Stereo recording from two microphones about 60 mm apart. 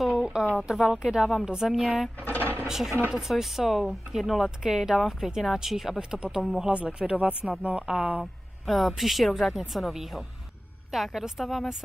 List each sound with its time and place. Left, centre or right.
0.0 s a sound: centre
0.7 s a woman's voice: centre
2.2 s sewing machine: left
2.6 s speech: centre
7.8 s a woman's voice: centre